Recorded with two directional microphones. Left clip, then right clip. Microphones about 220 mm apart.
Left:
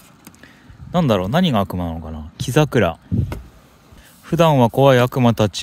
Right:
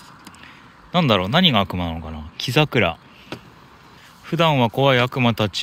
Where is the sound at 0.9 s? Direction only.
25° left (ahead or behind).